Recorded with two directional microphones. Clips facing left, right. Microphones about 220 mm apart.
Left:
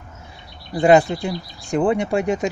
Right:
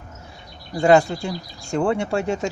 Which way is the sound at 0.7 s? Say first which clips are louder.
Left 2 dB; 20° left (ahead or behind).